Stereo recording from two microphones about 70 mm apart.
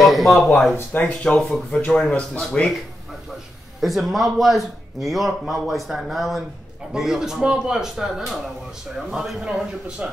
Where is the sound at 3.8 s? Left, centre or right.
Centre.